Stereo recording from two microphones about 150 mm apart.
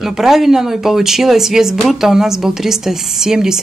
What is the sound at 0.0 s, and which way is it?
Speech, centre (ahead or behind).